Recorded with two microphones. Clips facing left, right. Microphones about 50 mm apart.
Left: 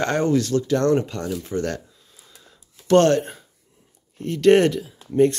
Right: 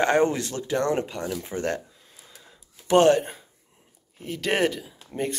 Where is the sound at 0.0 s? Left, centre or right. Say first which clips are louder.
Left 1 dB; right.